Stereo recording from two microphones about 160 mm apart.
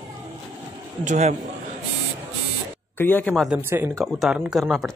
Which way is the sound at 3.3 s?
Centre (ahead or behind).